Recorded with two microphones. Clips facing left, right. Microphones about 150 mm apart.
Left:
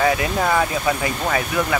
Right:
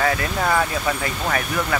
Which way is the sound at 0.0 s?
20° left (ahead or behind).